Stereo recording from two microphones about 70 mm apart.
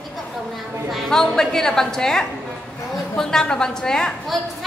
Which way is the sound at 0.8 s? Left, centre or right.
Centre.